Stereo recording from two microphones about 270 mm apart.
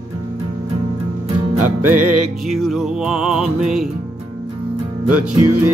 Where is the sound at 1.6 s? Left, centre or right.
Right.